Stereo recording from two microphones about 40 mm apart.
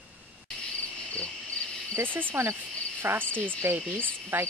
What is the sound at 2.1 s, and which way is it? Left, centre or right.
Speech, right.